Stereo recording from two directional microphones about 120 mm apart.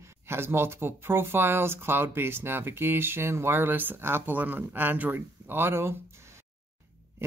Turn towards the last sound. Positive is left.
turn(degrees=-20)  # may be behind; listen again after turning